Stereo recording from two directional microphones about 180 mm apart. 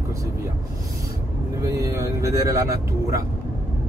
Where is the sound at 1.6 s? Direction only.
15° right (ahead or behind).